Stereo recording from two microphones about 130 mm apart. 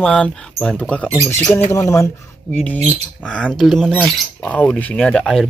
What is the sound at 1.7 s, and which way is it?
Speech, 25° left (ahead or behind).